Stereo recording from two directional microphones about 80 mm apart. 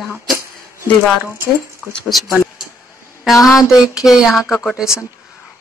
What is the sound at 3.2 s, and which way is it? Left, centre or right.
Speech, centre.